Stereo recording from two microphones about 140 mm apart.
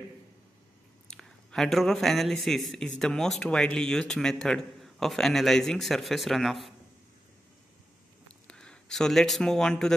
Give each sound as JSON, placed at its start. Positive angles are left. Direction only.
{"t": 1.0, "sound": "a sound", "side_deg": 5}
{"t": 2.4, "sound": "speech", "side_deg": 0}
{"t": 8.5, "sound": "speech", "side_deg": 5}